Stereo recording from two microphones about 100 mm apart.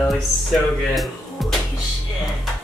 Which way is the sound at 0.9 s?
Centre (ahead or behind).